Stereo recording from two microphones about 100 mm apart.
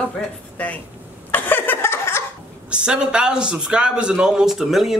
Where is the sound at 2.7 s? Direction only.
10° right (ahead or behind).